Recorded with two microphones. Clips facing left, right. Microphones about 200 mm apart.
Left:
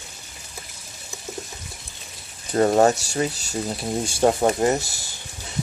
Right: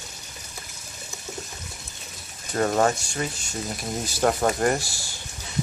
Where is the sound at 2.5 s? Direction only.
30° left (ahead or behind).